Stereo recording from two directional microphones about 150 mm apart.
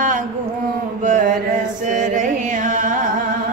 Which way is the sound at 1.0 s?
60° right (ahead or behind).